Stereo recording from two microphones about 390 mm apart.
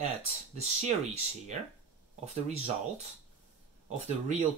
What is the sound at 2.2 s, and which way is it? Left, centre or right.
Speech, centre.